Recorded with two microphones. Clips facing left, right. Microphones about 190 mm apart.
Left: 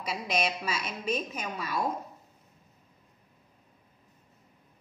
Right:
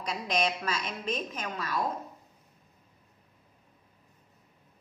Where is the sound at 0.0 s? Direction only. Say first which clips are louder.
Right 1 dB; 5° left (ahead or behind).